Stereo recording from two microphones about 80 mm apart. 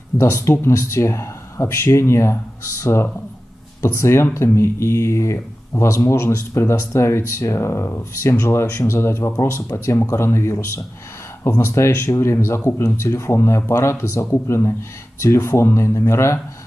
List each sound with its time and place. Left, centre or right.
0.1 s speech: left